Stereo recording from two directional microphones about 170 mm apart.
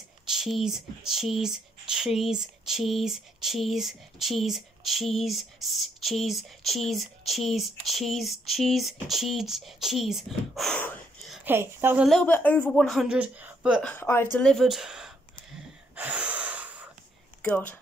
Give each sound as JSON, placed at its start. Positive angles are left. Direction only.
{"t": 0.3, "sound": "speech", "side_deg": 0}
{"t": 11.4, "sound": "a woman's voice", "side_deg": -10}
{"t": 12.1, "sound": "speech", "side_deg": 5}
{"t": 13.8, "sound": "speech", "side_deg": 10}
{"t": 16.0, "sound": "gasp", "side_deg": -10}
{"t": 17.4, "sound": "speech", "side_deg": 10}